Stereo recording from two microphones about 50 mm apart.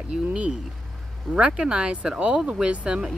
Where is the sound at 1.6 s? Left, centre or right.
Centre.